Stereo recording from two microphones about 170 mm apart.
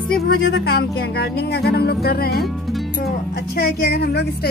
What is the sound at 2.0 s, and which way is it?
Speech, 65° left (ahead or behind).